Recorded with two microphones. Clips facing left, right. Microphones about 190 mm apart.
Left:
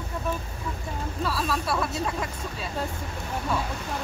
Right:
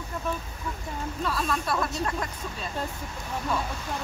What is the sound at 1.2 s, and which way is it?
Speech, 5° left (ahead or behind).